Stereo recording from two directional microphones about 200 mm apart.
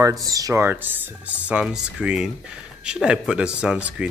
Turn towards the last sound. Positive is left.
turn(degrees=-5)  # may be behind; listen again after turning